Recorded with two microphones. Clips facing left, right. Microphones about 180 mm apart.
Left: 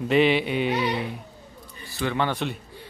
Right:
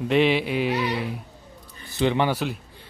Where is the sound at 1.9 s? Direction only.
20° right (ahead or behind).